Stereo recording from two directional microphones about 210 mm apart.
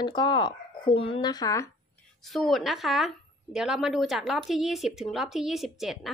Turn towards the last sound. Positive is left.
turn(degrees=0)  # may be behind; listen again after turning